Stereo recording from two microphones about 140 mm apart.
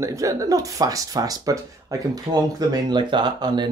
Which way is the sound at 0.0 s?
25° right (ahead or behind).